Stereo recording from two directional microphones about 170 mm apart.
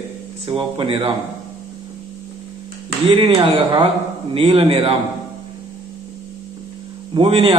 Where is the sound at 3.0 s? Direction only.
30° right (ahead or behind).